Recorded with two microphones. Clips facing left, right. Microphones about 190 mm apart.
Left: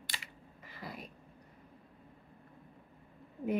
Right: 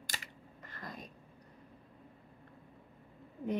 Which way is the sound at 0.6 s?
10° left (ahead or behind).